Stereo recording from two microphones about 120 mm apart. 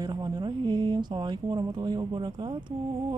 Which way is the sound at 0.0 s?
35° right (ahead or behind).